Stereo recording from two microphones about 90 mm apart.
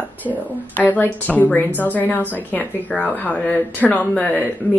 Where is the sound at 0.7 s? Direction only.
20° left (ahead or behind).